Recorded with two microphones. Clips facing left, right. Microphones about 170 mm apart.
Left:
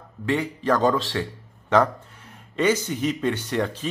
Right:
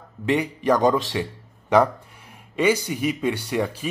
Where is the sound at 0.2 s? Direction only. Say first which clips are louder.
Right 2 dB; 15° right (ahead or behind).